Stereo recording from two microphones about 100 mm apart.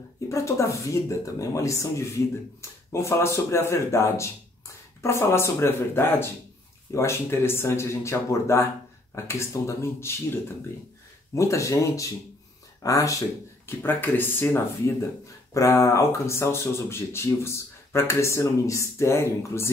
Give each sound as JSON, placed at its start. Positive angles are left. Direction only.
{"t": 0.3, "sound": "speech", "side_deg": 30}
{"t": 13.7, "sound": "speech", "side_deg": 20}
{"t": 15.5, "sound": "speech", "side_deg": 30}